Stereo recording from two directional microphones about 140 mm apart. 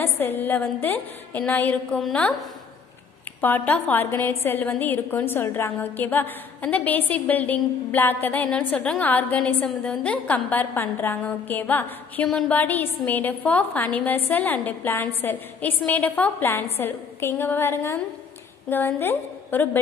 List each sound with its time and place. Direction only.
0.0 s a woman's voice: 15° left (ahead or behind)